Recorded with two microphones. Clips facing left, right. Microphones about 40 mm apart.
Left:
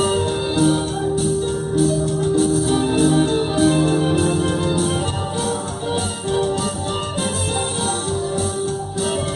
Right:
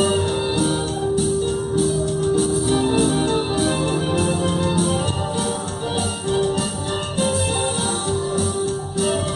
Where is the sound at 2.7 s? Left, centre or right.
Centre.